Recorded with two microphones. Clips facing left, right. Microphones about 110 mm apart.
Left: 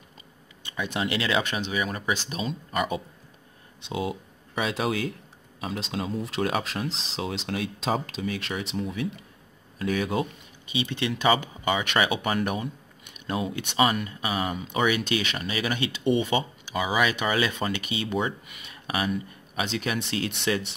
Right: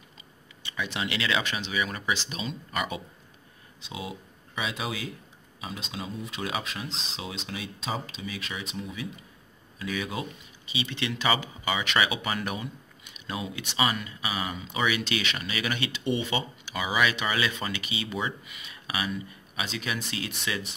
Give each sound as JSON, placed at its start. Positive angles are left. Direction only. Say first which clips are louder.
{"t": 0.7, "sound": "speech", "louder": "left 3 dB", "side_deg": 45}
{"t": 3.9, "sound": "speech", "louder": "left 8 dB", "side_deg": 55}
{"t": 8.8, "sound": "speech", "louder": "left 6 dB", "side_deg": 55}
{"t": 16.7, "sound": "speech", "louder": "left 2 dB", "side_deg": 35}